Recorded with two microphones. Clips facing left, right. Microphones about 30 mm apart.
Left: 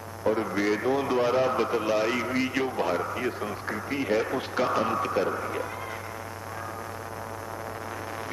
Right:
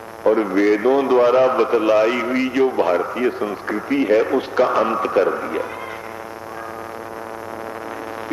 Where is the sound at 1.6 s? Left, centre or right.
Right.